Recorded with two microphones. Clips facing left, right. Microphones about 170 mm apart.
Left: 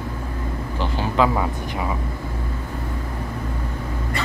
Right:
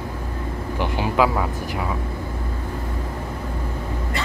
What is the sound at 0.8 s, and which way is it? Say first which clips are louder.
Speech: right 1 dB; 15° right (ahead or behind).